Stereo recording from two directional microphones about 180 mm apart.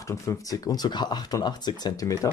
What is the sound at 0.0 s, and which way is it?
Speech, 15° left (ahead or behind).